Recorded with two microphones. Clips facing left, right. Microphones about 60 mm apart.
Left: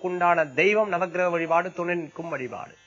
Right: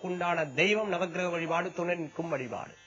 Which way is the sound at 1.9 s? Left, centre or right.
Centre.